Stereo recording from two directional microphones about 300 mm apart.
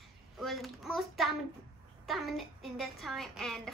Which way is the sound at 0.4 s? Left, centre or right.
Centre.